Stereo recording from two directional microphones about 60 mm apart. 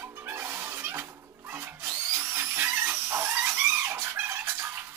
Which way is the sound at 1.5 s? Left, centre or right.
Right.